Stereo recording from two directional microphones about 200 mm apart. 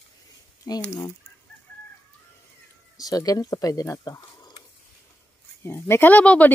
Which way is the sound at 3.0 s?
20° left (ahead or behind).